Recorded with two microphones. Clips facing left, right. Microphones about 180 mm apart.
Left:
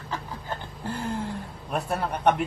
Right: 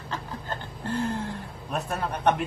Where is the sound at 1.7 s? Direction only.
10° left (ahead or behind).